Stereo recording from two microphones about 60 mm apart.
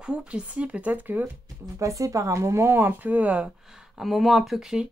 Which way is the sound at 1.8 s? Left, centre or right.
Right.